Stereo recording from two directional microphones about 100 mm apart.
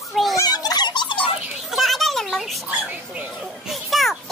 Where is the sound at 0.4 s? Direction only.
40° left (ahead or behind); by 1.3 s 55° left (ahead or behind).